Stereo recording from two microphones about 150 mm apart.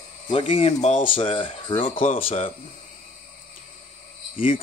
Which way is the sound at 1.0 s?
35° left (ahead or behind).